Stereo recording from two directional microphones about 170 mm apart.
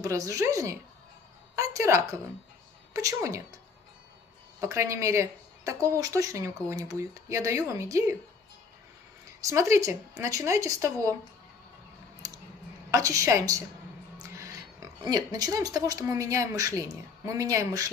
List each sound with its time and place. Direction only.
0.0 s a woman's voice: 20° right (ahead or behind)
4.6 s speech: 15° right (ahead or behind)
9.4 s speech: 15° right (ahead or behind)
12.9 s a woman's voice: 20° right (ahead or behind)